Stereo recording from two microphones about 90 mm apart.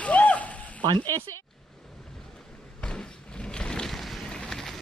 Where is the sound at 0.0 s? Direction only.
15° left (ahead or behind).